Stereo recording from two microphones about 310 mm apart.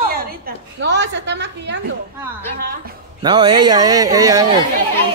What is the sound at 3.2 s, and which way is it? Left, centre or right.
Speech, centre.